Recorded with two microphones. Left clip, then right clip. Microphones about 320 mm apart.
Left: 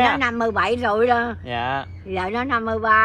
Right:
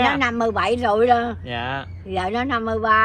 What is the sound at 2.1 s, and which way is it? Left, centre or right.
Speech, centre.